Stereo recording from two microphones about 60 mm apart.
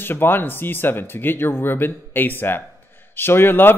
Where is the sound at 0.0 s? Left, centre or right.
Left.